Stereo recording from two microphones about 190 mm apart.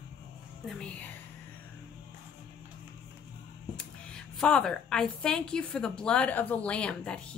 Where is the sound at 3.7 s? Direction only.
5° left (ahead or behind).